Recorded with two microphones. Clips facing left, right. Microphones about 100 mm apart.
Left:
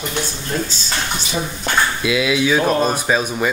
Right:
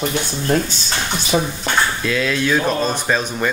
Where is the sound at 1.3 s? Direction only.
45° right (ahead or behind).